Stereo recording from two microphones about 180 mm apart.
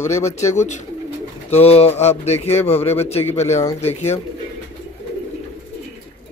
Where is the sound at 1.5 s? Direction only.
35° left (ahead or behind).